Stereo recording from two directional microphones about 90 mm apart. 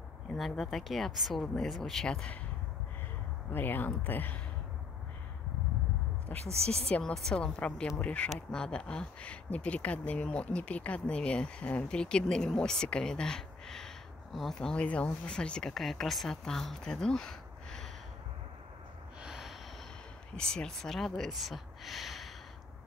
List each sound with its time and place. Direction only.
0.3 s speech: 5° left (ahead or behind)
3.5 s speech: 20° left (ahead or behind)
6.2 s speech: 5° left (ahead or behind)
19.2 s snort: 5° right (ahead or behind)
20.3 s speech: 10° left (ahead or behind)